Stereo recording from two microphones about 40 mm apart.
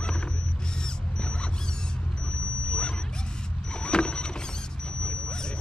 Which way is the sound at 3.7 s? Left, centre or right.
Left.